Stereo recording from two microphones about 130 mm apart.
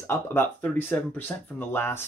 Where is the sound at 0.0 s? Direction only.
20° left (ahead or behind).